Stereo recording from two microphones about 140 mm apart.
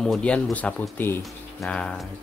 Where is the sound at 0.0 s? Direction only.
5° left (ahead or behind).